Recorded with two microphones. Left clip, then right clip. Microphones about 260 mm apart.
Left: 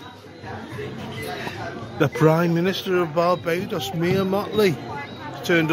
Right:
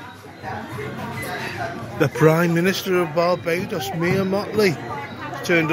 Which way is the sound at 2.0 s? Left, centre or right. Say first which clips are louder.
Right 2 dB; centre.